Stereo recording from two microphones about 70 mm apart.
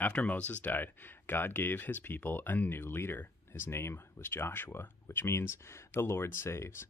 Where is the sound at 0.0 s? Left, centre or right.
Left.